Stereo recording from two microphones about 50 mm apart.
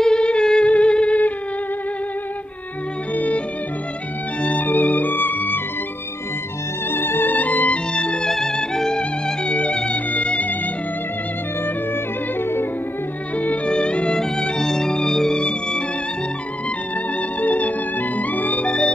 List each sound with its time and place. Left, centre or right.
0.0 s music: centre
3.2 s music: left
6.9 s music: left
7.3 s music: left
7.9 s music: centre
9.4 s music: left
12.4 s music: left
13.7 s music: centre
17.4 s music: left